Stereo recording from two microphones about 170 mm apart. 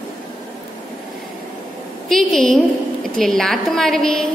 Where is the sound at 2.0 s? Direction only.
Centre (ahead or behind).